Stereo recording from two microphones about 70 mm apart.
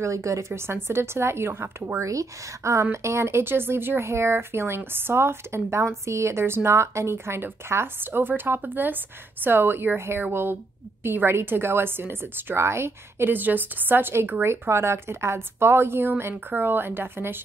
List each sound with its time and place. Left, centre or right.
0.0 s a woman's voice: right
1.5 s speech: right
2.0 s a woman's voice: right